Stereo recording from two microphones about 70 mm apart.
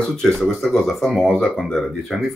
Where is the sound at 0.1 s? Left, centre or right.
Centre.